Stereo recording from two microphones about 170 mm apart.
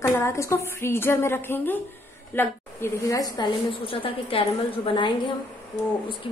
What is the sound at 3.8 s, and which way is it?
A woman's voice, 30° left (ahead or behind).